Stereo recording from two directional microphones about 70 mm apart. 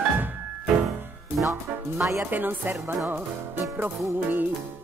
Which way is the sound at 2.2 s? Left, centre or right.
Right.